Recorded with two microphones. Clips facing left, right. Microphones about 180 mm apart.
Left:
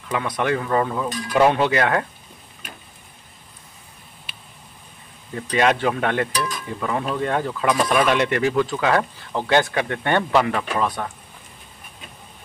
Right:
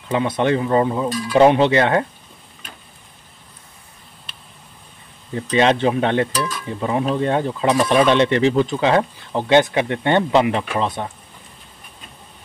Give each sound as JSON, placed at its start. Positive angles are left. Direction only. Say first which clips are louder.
{"t": 0.1, "sound": "speech", "louder": "right 4 dB", "side_deg": -25}
{"t": 5.3, "sound": "speech", "louder": "right 3 dB", "side_deg": -25}